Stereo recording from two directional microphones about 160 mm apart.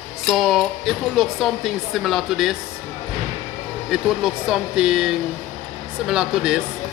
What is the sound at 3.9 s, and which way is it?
Speech, 5° right (ahead or behind).